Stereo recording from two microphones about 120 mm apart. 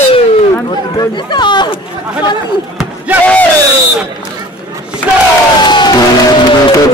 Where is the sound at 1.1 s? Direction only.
40° left (ahead or behind).